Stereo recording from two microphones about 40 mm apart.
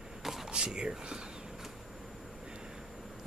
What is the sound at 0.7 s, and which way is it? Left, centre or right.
Speech, right.